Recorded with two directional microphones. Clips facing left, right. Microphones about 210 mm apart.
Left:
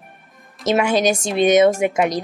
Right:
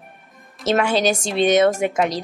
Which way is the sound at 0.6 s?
10° left (ahead or behind).